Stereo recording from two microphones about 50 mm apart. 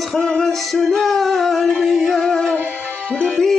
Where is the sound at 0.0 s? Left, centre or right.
Centre.